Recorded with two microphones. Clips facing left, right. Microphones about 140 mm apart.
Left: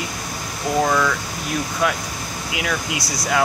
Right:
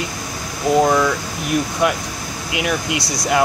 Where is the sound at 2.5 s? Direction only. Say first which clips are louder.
Right 4 dB; 20° right (ahead or behind).